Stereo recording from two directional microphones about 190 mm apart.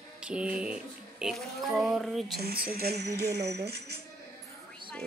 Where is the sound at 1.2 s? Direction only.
Centre (ahead or behind).